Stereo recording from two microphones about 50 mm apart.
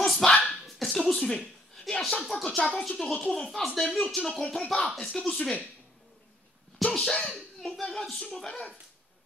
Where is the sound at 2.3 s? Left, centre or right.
Left.